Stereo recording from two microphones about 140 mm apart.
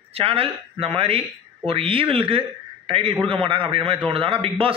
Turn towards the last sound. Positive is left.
turn(degrees=-40)  # may be behind; listen again after turning